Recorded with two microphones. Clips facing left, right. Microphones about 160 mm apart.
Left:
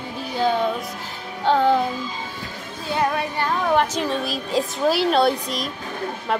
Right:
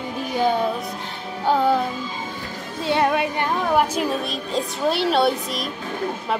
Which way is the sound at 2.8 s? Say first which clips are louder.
Right 3 dB; 25° right (ahead or behind).